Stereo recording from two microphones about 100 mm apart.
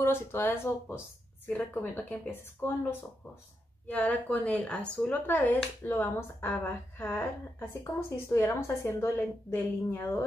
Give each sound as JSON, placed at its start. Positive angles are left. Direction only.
{"t": 0.0, "sound": "a woman's voice", "side_deg": 25}
{"t": 3.8, "sound": "a woman's voice", "side_deg": 15}